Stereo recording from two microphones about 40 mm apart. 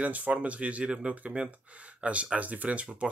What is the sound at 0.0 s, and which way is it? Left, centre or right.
Speech, right.